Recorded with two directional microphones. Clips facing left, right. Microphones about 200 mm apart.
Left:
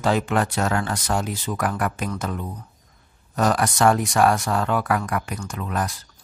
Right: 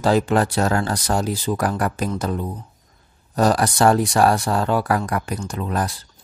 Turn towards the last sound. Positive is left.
turn(degrees=-35)  # may be behind; listen again after turning